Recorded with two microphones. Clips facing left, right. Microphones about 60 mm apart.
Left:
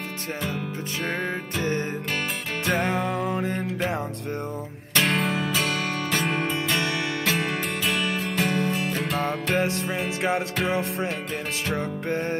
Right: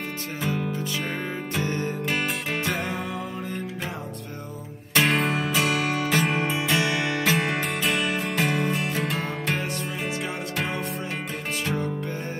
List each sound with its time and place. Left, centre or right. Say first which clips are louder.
0.4 s music: right 4 dB; centre
1.6 s music: left 2 dB; left
2.7 s music: left 5 dB; left
4.9 s music: right 1 dB; centre